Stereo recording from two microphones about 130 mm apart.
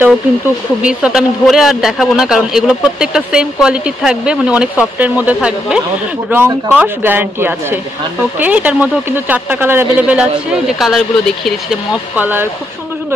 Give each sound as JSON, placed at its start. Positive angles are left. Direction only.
{"t": 0.8, "sound": "a man's voice", "side_deg": -5}
{"t": 10.8, "sound": "speech", "side_deg": 0}
{"t": 12.2, "sound": "a man's voice", "side_deg": -15}